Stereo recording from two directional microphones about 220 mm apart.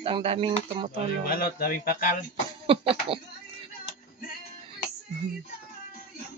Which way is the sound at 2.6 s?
25° right (ahead or behind).